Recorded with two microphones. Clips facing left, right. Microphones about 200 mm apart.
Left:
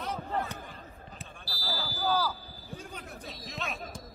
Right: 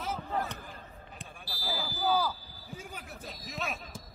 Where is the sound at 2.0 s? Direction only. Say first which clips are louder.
Right 1 dB; 10° right (ahead or behind).